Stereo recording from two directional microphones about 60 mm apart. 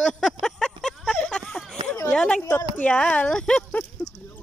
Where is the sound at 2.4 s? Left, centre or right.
Left.